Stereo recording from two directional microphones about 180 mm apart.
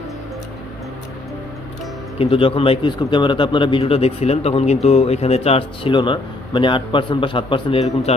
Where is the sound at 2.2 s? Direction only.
30° left (ahead or behind).